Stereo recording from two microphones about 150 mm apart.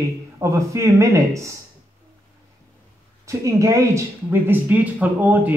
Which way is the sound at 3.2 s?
20° right (ahead or behind).